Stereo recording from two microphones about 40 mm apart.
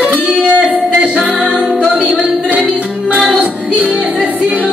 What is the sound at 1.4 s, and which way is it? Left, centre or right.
A capella, right.